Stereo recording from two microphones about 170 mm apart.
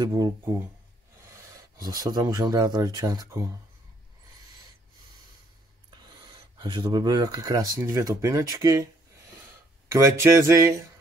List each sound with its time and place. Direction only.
0.0 s speech: 25° right (ahead or behind)
1.8 s speech: 20° right (ahead or behind)
5.9 s speech: 25° right (ahead or behind)
9.8 s speech: 15° right (ahead or behind)